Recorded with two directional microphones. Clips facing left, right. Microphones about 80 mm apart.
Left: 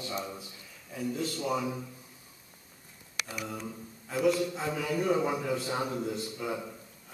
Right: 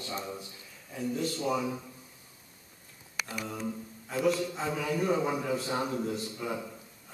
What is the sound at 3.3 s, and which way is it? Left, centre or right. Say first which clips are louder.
A man's voice: right 3 dB; centre.